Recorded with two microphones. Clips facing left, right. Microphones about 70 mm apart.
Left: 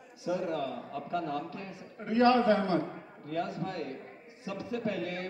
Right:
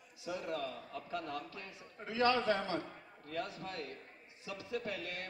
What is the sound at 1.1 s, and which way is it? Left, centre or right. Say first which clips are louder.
Music: left 8 dB; left.